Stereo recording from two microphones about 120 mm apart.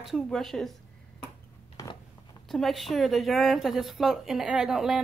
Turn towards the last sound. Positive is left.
turn(degrees=-5)  # may be behind; listen again after turning